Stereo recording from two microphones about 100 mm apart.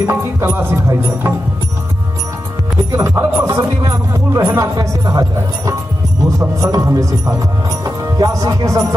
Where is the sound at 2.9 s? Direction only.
30° right (ahead or behind).